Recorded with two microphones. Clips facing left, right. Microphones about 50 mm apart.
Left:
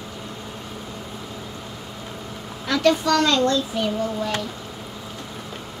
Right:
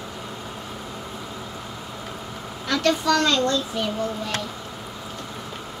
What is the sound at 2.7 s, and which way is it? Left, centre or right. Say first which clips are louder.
Speech: left 2 dB; centre.